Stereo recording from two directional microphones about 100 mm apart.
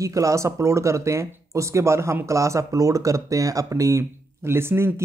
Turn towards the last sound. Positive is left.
turn(degrees=-25)  # may be behind; listen again after turning